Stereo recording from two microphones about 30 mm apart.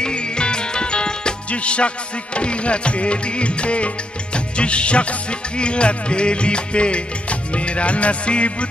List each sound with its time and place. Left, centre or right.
0.0 s music: left